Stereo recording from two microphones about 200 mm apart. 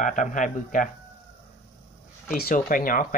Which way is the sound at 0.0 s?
40° left (ahead or behind).